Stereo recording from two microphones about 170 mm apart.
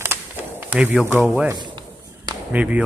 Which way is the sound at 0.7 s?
10° right (ahead or behind).